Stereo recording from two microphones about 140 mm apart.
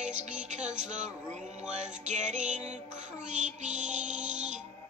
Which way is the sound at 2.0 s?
60° right (ahead or behind).